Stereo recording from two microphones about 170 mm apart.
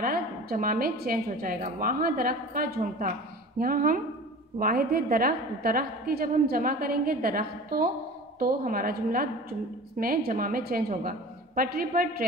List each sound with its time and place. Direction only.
0.0 s a woman's voice: 60° right (ahead or behind)